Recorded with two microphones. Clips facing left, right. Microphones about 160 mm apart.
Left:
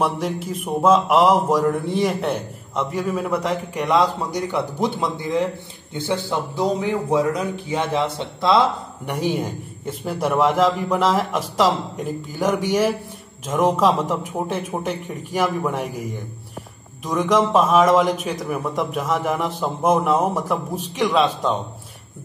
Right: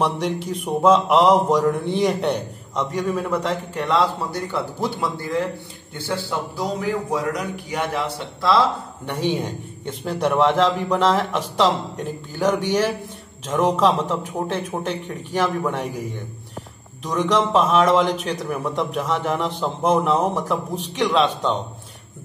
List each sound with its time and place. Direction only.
0.0 s a man's voice: 5° left (ahead or behind); by 9.1 s 20° left (ahead or behind)
9.1 s a man's voice: 10° left (ahead or behind)
17.0 s a man's voice: 10° left (ahead or behind)